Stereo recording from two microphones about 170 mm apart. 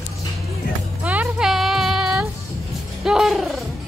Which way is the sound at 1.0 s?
10° right (ahead or behind).